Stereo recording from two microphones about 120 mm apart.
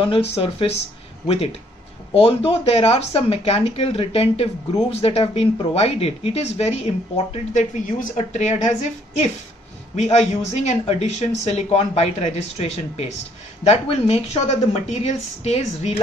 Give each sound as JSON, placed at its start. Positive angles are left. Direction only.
{"t": 0.0, "sound": "speech", "side_deg": 55}
{"t": 7.5, "sound": "a woman's voice", "side_deg": 80}
{"t": 9.9, "sound": "speech", "side_deg": 70}